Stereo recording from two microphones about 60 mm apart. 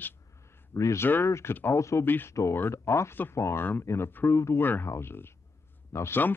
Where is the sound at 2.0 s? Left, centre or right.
Left.